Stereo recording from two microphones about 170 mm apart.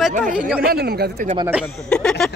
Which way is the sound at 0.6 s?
65° right (ahead or behind).